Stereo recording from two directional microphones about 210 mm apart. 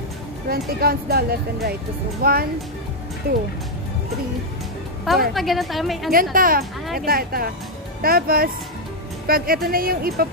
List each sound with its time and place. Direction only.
0.5 s speech: 45° right (ahead or behind)
5.3 s a woman's voice: centre (ahead or behind)
6.3 s speech: 40° right (ahead or behind)